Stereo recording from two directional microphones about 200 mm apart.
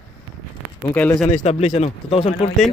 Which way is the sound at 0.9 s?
10° left (ahead or behind).